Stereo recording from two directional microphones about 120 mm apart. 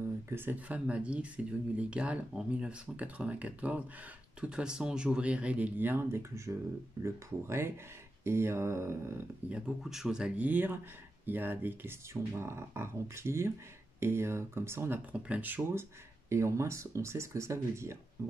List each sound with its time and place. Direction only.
0.3 s speech: 15° right (ahead or behind)
9.5 s speech: 5° right (ahead or behind); by 17.9 s 25° right (ahead or behind)